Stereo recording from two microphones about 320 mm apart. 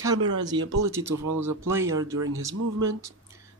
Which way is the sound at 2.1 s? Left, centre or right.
Right.